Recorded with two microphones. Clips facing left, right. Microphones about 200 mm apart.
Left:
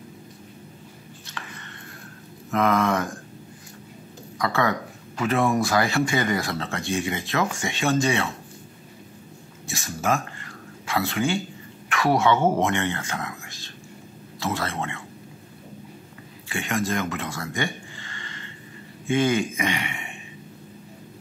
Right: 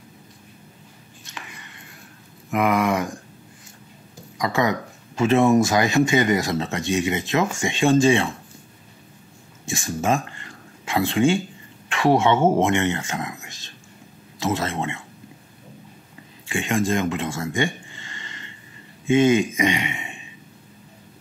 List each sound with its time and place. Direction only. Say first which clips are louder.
1.3 s chopping: even; 10° right (ahead or behind)
2.5 s speech: right 1 dB; 10° right (ahead or behind)
4.4 s speech: right 2 dB; 15° right (ahead or behind)
9.7 s speech: right 3 dB; 25° right (ahead or behind)
16.4 s speech: right 4 dB; 25° right (ahead or behind)
17.9 s a sound: left 1 dB; 20° right (ahead or behind)
19.0 s speech: right 5 dB; 20° right (ahead or behind)